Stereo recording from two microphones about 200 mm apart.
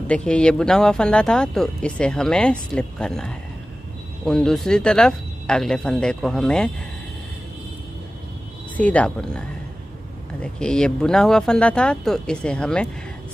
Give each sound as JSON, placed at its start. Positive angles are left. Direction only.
{"t": 0.1, "sound": "speech", "side_deg": 5}
{"t": 8.7, "sound": "speech", "side_deg": 5}
{"t": 10.4, "sound": "speech", "side_deg": 5}